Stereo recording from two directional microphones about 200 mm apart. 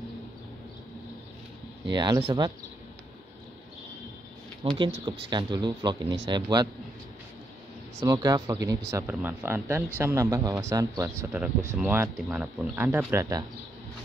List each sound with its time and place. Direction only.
1.9 s speech: 20° right (ahead or behind)
4.6 s speech: 25° right (ahead or behind)
8.0 s speech: 15° right (ahead or behind)